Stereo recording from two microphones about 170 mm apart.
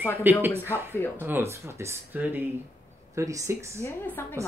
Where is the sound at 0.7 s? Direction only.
10° left (ahead or behind).